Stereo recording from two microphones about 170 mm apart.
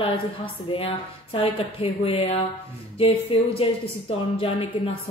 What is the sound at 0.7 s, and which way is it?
A woman's voice, 35° left (ahead or behind).